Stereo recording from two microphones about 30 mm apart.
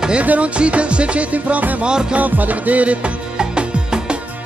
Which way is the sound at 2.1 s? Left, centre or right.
Right.